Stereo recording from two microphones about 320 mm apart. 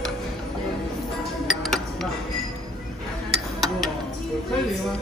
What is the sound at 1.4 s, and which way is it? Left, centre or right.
Cutlery, centre.